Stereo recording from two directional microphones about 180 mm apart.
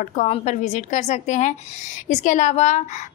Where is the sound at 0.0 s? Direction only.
40° left (ahead or behind).